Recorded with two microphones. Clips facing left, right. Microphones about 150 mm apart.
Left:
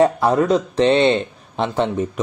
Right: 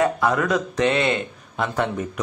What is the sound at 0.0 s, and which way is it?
Speech, 30° left (ahead or behind).